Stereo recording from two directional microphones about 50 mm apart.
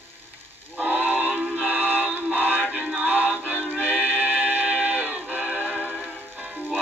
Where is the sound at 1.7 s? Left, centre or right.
Right.